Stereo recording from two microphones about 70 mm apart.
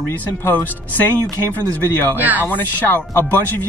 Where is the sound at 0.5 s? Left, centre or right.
Left.